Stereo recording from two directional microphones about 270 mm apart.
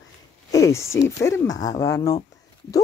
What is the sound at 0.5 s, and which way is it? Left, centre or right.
Speech, centre.